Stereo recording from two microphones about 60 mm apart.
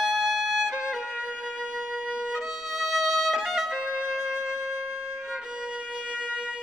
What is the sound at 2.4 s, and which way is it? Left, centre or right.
Music, centre.